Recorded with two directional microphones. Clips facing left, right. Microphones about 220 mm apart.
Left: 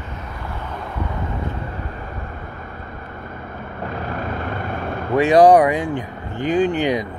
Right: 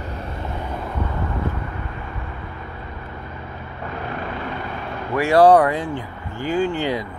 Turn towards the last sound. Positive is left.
turn(degrees=15)  # may be behind; listen again after turning